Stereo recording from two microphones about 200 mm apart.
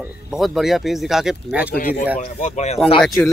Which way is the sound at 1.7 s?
45° left (ahead or behind).